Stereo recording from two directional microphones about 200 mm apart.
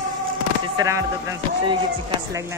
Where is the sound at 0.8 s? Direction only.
15° right (ahead or behind).